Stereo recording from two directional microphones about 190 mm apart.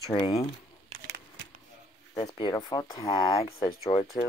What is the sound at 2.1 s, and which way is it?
Speech, 25° left (ahead or behind).